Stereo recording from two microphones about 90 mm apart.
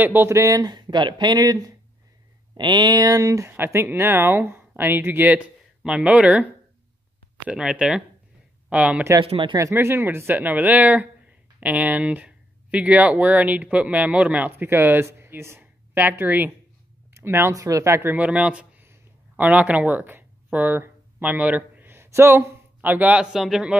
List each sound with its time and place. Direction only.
0.0 s speech: 25° right (ahead or behind)
0.4 s speech: 45° right (ahead or behind)
2.5 s speech: 55° right (ahead or behind); by 9.0 s 15° right (ahead or behind)
9.2 s speech: 65° right (ahead or behind)
9.6 s a woman's voice: 30° right (ahead or behind)
17.6 s speech: 40° right (ahead or behind)
18.1 s speech: 15° right (ahead or behind)
22.8 s speech: 20° right (ahead or behind)
23.3 s a man's voice: 5° right (ahead or behind)